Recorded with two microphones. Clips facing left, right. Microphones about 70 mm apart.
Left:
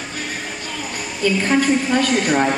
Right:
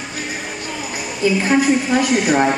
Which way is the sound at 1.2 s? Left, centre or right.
Centre.